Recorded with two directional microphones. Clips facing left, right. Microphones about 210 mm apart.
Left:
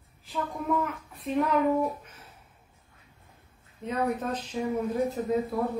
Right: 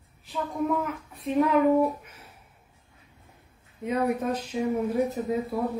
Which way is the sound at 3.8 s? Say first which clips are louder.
Right 3 dB; 10° right (ahead or behind).